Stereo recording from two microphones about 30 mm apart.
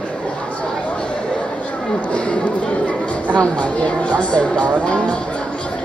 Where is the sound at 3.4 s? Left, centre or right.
Left.